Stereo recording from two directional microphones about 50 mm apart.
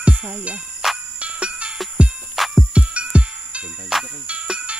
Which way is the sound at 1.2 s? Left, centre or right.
Right.